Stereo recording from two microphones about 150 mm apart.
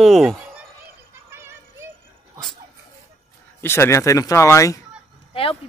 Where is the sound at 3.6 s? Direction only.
15° left (ahead or behind).